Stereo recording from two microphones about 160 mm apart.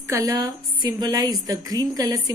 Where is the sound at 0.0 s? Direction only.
20° right (ahead or behind).